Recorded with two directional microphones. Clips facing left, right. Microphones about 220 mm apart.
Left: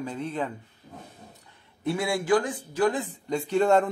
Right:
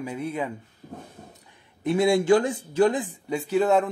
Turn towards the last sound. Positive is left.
turn(degrees=0)  # may be behind; listen again after turning